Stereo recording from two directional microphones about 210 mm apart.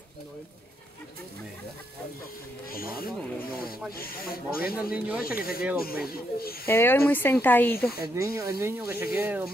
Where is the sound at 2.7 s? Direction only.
45° left (ahead or behind).